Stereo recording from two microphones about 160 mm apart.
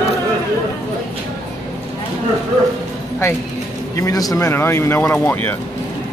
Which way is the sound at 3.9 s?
20° left (ahead or behind).